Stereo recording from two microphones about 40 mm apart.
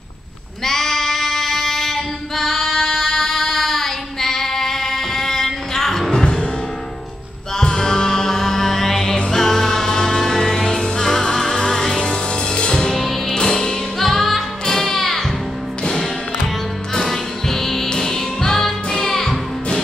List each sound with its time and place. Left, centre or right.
0.7 s female singing: centre
7.5 s music: centre
13.0 s music: centre
17.0 s music: centre